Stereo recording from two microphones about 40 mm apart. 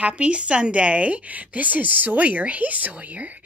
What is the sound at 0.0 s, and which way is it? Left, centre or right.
A woman's voice, right.